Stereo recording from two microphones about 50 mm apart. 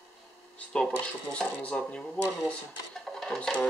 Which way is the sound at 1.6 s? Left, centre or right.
Left.